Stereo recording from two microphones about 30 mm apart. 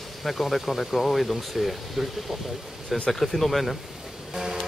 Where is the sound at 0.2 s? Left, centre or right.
Centre.